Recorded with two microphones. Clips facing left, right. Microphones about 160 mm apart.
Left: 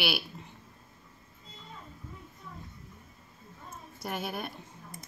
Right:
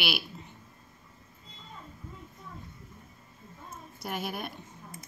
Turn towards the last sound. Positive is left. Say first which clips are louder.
# even
turn(degrees=-5)  # may be behind; listen again after turning